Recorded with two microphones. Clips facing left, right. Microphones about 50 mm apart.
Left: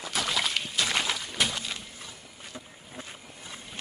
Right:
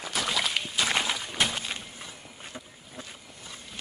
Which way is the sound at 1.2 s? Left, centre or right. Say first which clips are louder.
Right 1 dB; right.